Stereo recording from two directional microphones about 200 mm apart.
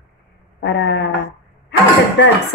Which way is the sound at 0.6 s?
60° left (ahead or behind).